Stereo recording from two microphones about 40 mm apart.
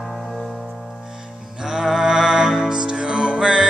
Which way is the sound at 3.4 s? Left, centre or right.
Centre.